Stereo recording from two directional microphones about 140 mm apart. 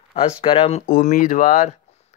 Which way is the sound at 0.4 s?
40° left (ahead or behind).